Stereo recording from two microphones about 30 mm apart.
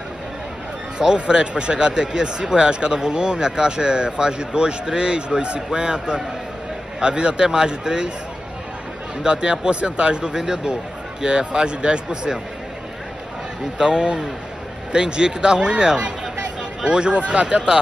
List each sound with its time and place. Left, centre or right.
1.1 s speech: right
9.2 s speech: right
10.3 s speech: right
13.7 s speech: right